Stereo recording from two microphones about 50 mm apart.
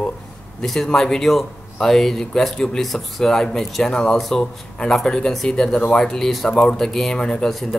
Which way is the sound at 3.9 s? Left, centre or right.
Centre.